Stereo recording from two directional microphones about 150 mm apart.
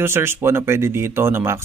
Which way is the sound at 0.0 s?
15° right (ahead or behind).